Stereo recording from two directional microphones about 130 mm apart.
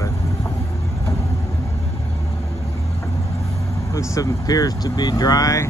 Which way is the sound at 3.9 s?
25° left (ahead or behind).